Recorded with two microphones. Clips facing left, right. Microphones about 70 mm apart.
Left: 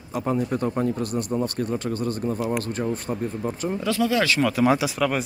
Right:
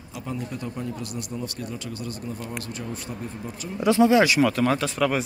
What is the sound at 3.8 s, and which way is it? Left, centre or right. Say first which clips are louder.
Speech: right 6 dB; right.